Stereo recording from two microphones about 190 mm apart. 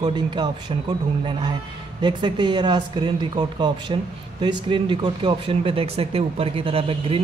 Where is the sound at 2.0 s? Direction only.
25° right (ahead or behind).